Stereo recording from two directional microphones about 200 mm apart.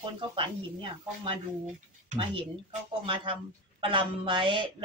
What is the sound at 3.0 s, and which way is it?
Speech, 25° right (ahead or behind).